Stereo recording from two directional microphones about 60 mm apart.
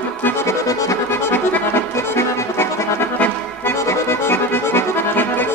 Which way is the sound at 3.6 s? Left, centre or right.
Left.